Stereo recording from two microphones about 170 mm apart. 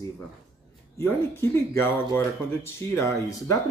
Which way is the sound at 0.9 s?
15° left (ahead or behind).